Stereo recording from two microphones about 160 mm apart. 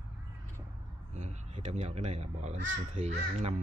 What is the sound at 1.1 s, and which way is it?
Speech, 45° right (ahead or behind).